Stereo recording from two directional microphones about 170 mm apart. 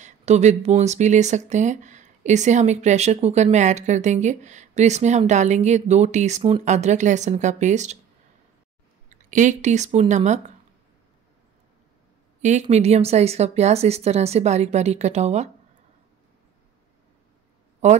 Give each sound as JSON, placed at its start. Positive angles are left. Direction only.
{"t": 0.0, "sound": "speech", "side_deg": -40}
{"t": 9.1, "sound": "speech", "side_deg": -45}
{"t": 12.4, "sound": "speech", "side_deg": -45}
{"t": 17.8, "sound": "speech", "side_deg": -40}